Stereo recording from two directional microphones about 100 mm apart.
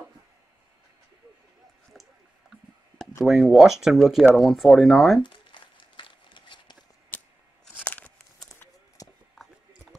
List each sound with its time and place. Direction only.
3.3 s speech: centre (ahead or behind)
5.2 s crumpling: 55° left (ahead or behind)
7.1 s scissors: 15° left (ahead or behind)
7.8 s tearing: 15° left (ahead or behind)
8.2 s a sound: 5° left (ahead or behind)
9.0 s a sound: 35° left (ahead or behind)